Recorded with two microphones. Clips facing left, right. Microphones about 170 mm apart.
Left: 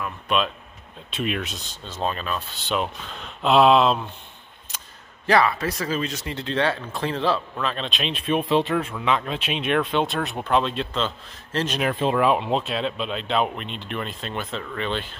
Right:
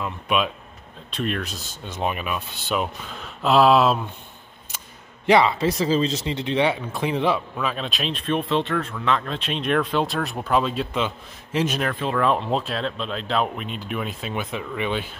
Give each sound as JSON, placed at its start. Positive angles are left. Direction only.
{"t": 1.1, "sound": "speech", "side_deg": 5}
{"t": 1.7, "sound": "speech", "side_deg": -15}
{"t": 5.2, "sound": "speech", "side_deg": -20}
{"t": 7.5, "sound": "speech", "side_deg": -5}
{"t": 8.3, "sound": "speech", "side_deg": 10}
{"t": 11.9, "sound": "speech", "side_deg": 20}
{"t": 12.3, "sound": "speech", "side_deg": 0}